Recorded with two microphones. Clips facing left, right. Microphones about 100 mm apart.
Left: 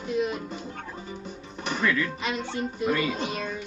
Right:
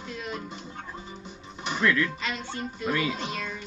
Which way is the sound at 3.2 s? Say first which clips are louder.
Left 3 dB; 20° left (ahead or behind).